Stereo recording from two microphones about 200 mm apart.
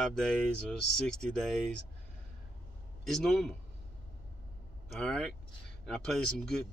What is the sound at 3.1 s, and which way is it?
Speech, centre (ahead or behind).